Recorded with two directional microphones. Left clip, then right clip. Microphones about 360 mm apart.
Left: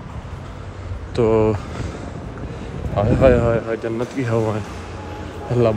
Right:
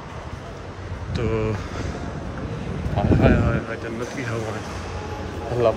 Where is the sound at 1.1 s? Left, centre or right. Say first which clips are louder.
Left 9 dB; centre.